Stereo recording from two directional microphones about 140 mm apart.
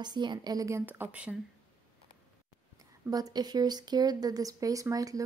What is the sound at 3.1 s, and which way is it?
Speech, 30° right (ahead or behind).